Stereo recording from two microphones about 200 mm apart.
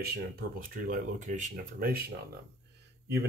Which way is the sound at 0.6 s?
45° right (ahead or behind).